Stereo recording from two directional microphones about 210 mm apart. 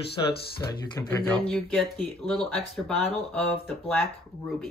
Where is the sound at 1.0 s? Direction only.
5° left (ahead or behind).